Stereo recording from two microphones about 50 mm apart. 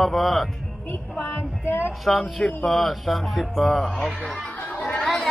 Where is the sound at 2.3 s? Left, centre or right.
Centre.